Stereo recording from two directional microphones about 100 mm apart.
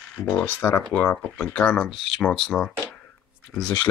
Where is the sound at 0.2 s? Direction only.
15° left (ahead or behind).